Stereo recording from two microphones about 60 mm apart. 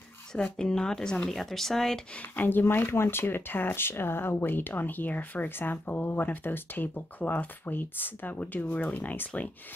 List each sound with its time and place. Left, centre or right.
0.4 s a woman's voice: centre
2.3 s speech: left